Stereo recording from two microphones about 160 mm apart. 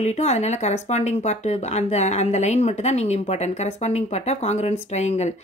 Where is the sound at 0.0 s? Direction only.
45° left (ahead or behind).